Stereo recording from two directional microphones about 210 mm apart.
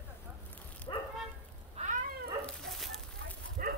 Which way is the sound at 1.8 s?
30° right (ahead or behind).